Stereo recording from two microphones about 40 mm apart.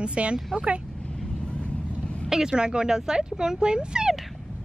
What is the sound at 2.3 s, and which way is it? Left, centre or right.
Speech, centre.